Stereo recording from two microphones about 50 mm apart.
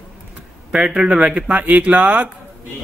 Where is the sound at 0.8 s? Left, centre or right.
Right.